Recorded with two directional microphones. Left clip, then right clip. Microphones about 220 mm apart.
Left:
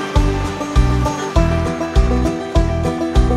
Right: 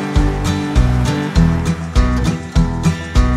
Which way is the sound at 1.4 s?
Centre (ahead or behind).